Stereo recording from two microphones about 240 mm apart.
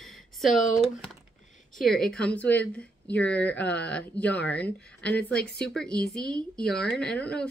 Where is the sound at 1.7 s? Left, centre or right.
Centre.